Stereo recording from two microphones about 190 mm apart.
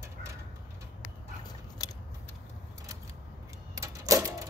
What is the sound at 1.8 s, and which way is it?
Scissors, 20° left (ahead or behind).